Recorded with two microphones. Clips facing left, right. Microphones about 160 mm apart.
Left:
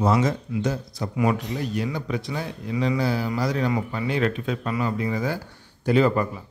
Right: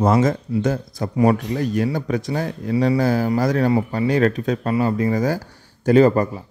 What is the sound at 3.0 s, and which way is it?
Speech, 45° right (ahead or behind).